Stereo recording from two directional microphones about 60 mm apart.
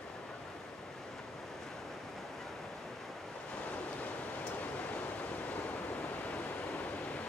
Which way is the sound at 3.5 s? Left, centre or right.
Left.